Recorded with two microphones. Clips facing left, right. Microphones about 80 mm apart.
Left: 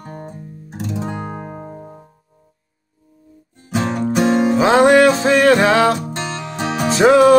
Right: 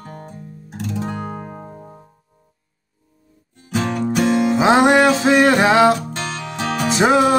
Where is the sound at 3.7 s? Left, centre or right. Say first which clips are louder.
Left 1 dB; left.